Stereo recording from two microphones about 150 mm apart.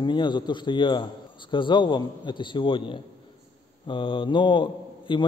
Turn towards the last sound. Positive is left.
turn(degrees=30)  # may be behind; listen again after turning